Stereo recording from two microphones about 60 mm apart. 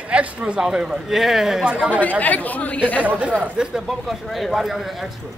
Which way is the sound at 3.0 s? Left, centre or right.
Right.